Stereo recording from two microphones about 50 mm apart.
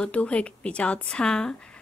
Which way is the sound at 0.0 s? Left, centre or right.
Left.